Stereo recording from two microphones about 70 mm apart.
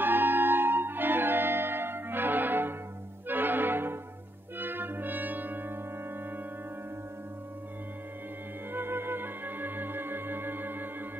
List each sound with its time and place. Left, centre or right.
0.0 s music: right
4.6 s brass instrument: right
8.7 s music: right